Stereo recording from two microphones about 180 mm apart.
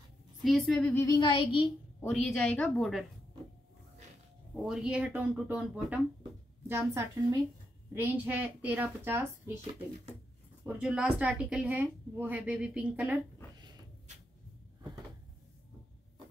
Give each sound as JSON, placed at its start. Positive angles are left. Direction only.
{"t": 0.4, "sound": "a woman's voice", "side_deg": 0}
{"t": 1.0, "sound": "a woman's voice", "side_deg": 25}
{"t": 2.0, "sound": "a woman's voice", "side_deg": 5}
{"t": 4.6, "sound": "speech", "side_deg": -5}
{"t": 10.6, "sound": "speech", "side_deg": -5}